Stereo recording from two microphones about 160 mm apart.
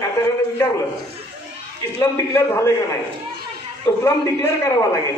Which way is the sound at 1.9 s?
15° left (ahead or behind).